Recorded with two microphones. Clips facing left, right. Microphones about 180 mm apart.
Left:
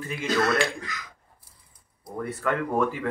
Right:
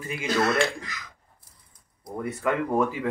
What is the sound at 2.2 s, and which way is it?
Speech, 10° right (ahead or behind).